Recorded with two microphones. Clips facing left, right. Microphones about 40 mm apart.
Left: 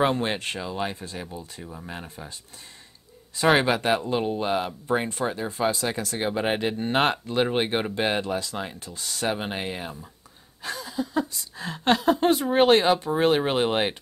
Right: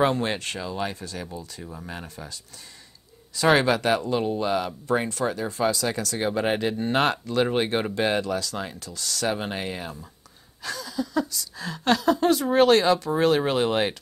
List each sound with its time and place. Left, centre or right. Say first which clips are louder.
0.0 s speech: right 1 dB; left
3.5 s speech: right 1 dB; left